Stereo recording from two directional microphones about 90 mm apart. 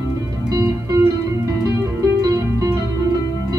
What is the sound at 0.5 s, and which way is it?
Music, 40° right (ahead or behind).